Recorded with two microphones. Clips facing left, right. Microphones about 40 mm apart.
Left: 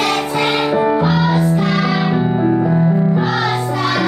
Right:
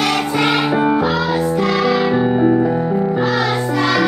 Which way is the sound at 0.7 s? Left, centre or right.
Centre.